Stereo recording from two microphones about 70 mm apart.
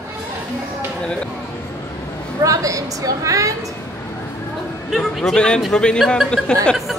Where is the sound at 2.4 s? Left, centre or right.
Right.